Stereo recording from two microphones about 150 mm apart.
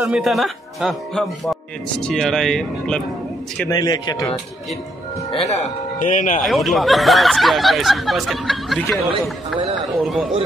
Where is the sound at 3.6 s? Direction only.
25° left (ahead or behind).